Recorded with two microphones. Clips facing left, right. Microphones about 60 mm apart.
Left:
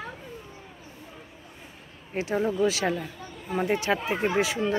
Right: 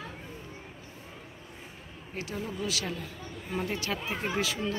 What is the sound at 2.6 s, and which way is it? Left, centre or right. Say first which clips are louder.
Speech: left 9 dB; left.